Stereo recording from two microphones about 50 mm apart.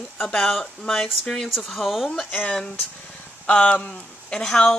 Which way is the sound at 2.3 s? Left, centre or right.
Left.